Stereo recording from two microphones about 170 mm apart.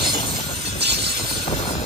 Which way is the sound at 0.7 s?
75° right (ahead or behind).